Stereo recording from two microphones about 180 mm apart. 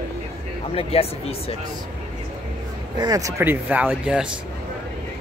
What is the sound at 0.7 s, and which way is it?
Speech, 30° left (ahead or behind).